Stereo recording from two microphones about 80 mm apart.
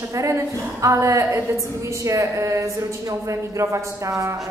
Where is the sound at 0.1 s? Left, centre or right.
Right.